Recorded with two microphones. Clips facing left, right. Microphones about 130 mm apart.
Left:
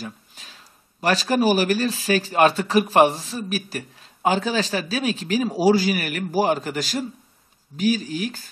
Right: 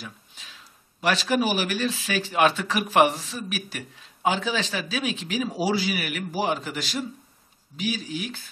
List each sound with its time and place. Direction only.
0.0 s a man's voice: 40° left (ahead or behind)